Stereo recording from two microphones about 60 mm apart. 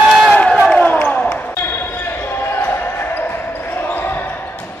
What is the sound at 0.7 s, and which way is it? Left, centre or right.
Basketball bounce, centre.